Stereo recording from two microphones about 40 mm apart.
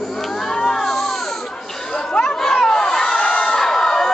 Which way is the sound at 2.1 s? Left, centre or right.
Centre.